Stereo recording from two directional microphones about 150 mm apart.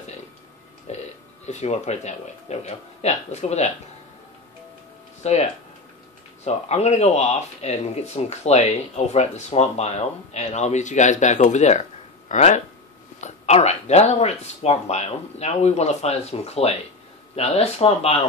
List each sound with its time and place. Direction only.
0.9 s burping: 50° left (ahead or behind)
1.4 s speech: 50° left (ahead or behind)
5.2 s speech: 45° left (ahead or behind)